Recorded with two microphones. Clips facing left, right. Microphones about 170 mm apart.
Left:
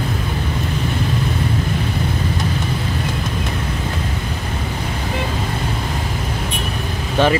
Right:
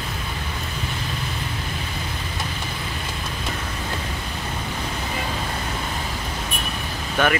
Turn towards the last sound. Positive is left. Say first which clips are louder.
# left 5 dB
turn(degrees=30)  # may be behind; listen again after turning